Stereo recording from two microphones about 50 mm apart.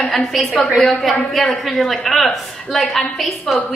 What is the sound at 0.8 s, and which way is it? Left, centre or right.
A woman's voice, centre.